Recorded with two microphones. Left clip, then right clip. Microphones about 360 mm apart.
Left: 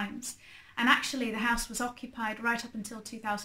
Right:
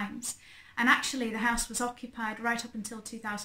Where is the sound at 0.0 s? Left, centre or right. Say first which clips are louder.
Even; centre.